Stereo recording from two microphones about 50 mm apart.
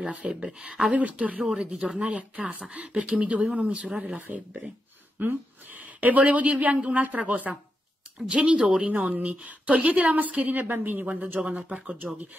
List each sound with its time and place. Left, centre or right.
0.0 s speech: right
0.9 s speech: right
5.2 s a woman's voice: right
8.9 s a woman's voice: right
11.4 s speech: right